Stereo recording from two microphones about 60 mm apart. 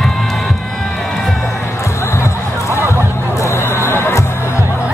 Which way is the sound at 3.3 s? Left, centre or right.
Left.